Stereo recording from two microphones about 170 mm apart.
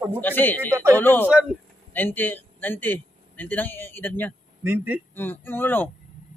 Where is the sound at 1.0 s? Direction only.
10° left (ahead or behind).